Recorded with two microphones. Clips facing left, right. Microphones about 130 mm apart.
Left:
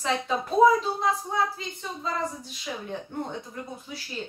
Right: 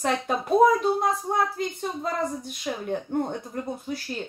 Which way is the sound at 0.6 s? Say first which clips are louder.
Right 1 dB; 55° right (ahead or behind).